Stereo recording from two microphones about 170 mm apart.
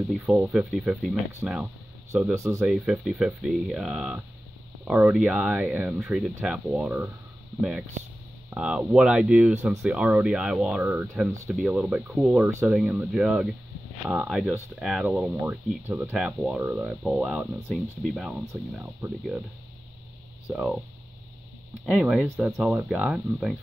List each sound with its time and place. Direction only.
0.1 s speech: centre (ahead or behind)
2.3 s speech: 15° right (ahead or behind)
2.6 s speech: 5° right (ahead or behind)
8.5 s speech: 5° right (ahead or behind)
19.0 s speech: 15° right (ahead or behind)
20.5 s speech: centre (ahead or behind)
21.8 s speech: centre (ahead or behind)